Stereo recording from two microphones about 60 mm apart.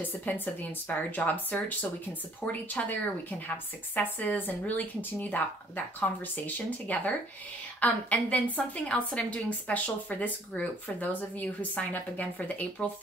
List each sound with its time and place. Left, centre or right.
0.2 s a woman's voice: left
5.9 s a woman's voice: left